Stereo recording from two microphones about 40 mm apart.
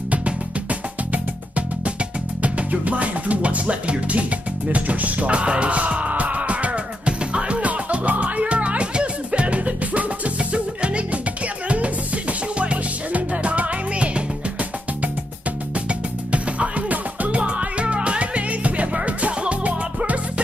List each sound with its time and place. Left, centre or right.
0.1 s music: right
15.7 s music: right